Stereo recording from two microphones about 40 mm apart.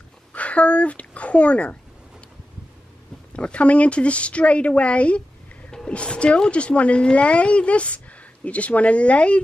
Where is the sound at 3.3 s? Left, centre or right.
Left.